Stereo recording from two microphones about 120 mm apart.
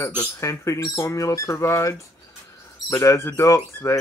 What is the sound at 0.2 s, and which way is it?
Speech, 25° left (ahead or behind).